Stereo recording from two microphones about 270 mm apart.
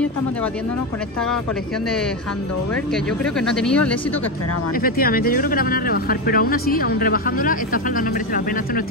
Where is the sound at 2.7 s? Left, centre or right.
Centre.